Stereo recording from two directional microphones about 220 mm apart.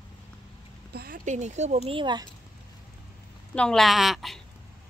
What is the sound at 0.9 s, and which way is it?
Speech, 40° right (ahead or behind).